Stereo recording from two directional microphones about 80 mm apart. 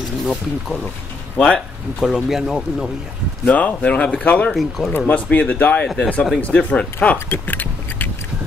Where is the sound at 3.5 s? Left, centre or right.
Centre.